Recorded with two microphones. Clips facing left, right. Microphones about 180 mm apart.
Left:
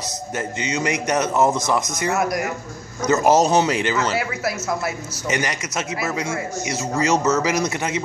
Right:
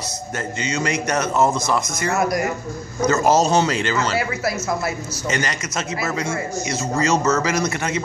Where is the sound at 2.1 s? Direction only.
5° left (ahead or behind).